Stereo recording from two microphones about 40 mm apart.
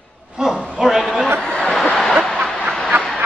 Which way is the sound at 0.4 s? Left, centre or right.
Centre.